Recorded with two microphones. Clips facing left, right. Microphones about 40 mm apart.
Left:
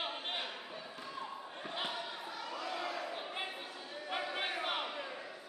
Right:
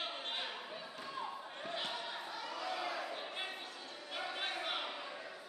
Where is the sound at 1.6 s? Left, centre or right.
Centre.